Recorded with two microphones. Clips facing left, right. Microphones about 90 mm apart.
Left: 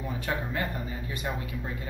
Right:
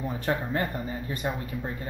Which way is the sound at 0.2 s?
40° right (ahead or behind).